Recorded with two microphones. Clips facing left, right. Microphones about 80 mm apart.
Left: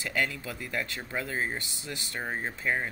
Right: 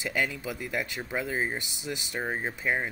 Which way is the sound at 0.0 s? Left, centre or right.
Centre.